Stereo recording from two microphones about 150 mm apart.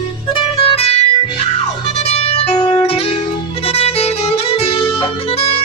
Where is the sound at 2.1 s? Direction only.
45° left (ahead or behind).